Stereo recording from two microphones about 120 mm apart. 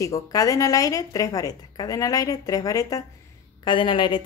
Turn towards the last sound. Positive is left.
turn(degrees=40)  # may be behind; listen again after turning